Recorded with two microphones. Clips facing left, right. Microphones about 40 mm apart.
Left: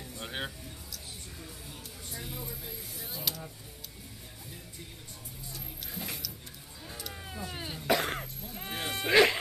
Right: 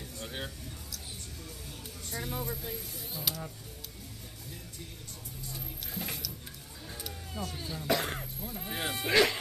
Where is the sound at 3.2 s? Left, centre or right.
Centre.